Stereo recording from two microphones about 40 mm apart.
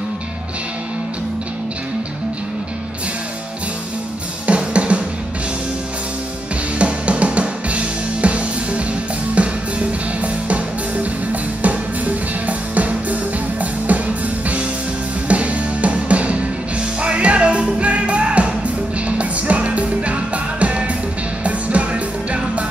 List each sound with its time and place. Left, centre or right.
4.5 s music: right
6.8 s music: right